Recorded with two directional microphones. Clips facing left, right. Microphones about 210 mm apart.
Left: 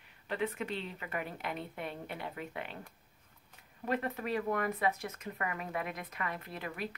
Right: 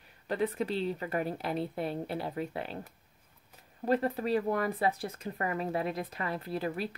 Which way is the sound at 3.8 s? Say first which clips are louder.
Right 6 dB; 35° right (ahead or behind).